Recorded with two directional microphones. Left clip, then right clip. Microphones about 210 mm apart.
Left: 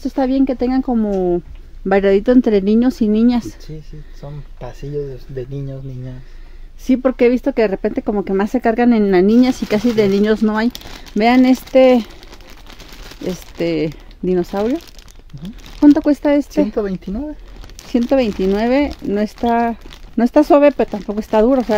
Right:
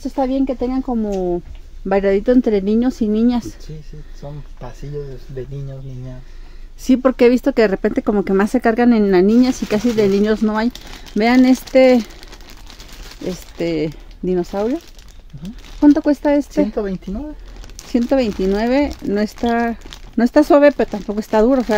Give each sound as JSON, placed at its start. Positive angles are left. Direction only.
{"t": 0.0, "sound": "speech", "side_deg": 20}
{"t": 6.8, "sound": "speech", "side_deg": -5}
{"t": 15.3, "sound": "speech", "side_deg": 30}
{"t": 15.8, "sound": "speech", "side_deg": 15}
{"t": 18.4, "sound": "speech", "side_deg": 10}